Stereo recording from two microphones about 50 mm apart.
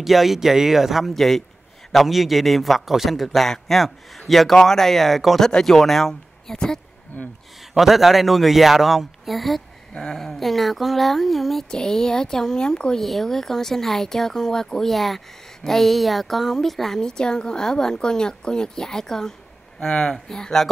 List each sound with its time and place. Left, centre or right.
0.0 s a man's voice: centre
7.1 s speech: left
7.7 s a man's voice: centre
11.7 s speech: centre